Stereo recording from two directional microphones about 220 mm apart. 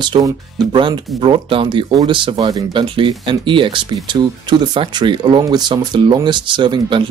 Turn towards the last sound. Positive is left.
turn(degrees=-20)  # may be behind; listen again after turning